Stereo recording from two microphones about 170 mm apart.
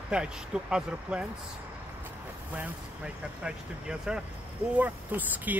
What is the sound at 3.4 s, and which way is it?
Speech, 5° right (ahead or behind).